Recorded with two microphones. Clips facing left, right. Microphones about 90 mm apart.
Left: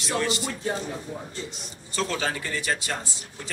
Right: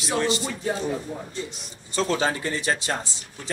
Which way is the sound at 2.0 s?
25° right (ahead or behind).